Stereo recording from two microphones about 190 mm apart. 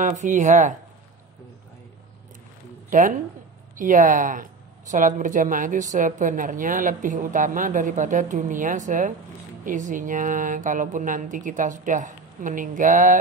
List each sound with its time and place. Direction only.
0.0 s speech: 40° right (ahead or behind)
2.9 s a woman's voice: 45° right (ahead or behind)